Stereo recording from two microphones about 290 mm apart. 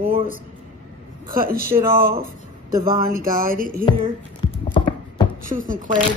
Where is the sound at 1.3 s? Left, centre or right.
Right.